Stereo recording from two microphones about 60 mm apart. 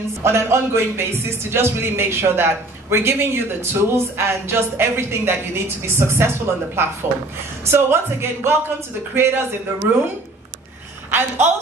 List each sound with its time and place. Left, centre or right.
0.2 s a man's voice: right
11.1 s a man's voice: right